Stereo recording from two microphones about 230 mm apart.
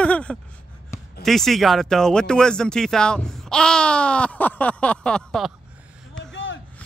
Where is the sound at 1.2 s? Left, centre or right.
Centre.